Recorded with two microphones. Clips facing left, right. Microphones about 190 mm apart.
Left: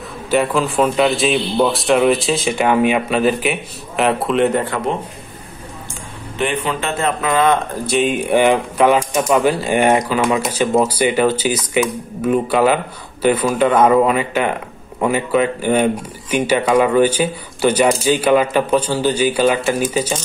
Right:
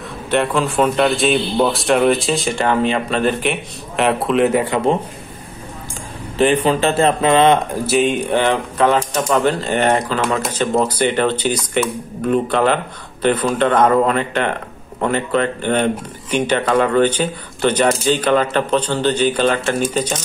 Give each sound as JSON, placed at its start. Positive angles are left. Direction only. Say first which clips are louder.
{"t": 0.3, "sound": "a man's voice", "louder": "left 1 dB", "side_deg": 0}
{"t": 2.6, "sound": "a man's voice", "louder": "left 3 dB", "side_deg": 10}
{"t": 6.3, "sound": "speech", "louder": "right 6 dB", "side_deg": -35}
{"t": 7.8, "sound": "speech", "louder": "right 1 dB", "side_deg": 0}